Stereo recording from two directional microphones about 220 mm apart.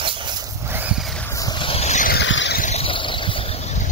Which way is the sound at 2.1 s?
55° left (ahead or behind).